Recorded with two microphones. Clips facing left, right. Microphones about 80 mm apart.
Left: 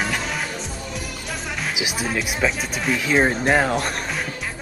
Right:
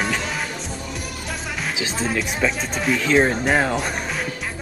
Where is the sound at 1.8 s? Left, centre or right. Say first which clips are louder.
Right 1 dB; centre.